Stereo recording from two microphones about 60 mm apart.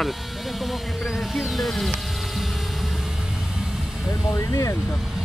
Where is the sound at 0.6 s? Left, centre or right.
Centre.